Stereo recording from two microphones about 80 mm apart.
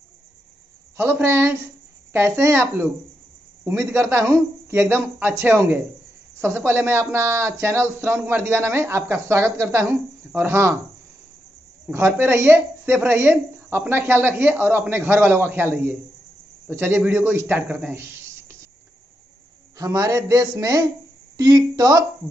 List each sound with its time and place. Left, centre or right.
0.9 s a woman's voice: right
11.9 s a woman's voice: right
19.8 s speech: right